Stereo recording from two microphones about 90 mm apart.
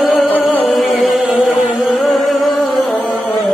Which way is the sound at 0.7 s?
Centre (ahead or behind).